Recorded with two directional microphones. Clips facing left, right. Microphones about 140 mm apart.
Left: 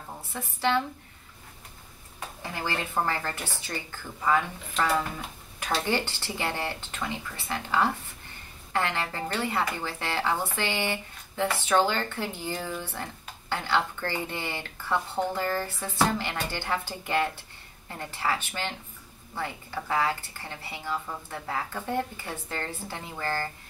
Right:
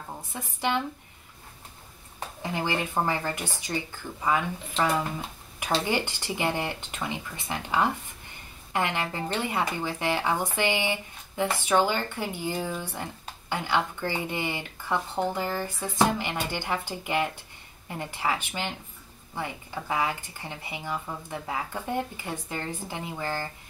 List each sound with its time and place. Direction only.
0.3 s speech: 15° right (ahead or behind)
2.1 s speech: 20° right (ahead or behind)
5.9 s speech: 15° right (ahead or behind)